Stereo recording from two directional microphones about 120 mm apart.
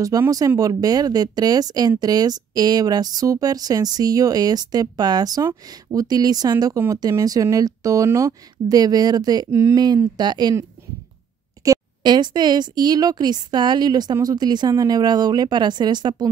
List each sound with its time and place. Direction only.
0.1 s speech: 30° right (ahead or behind)
9.5 s speech: 20° right (ahead or behind)
9.8 s speech: 35° right (ahead or behind)
11.6 s speech: 35° right (ahead or behind)